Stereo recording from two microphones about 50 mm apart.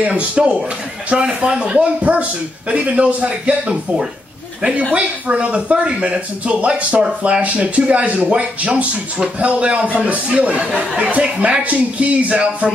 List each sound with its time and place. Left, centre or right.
0.0 s speech: right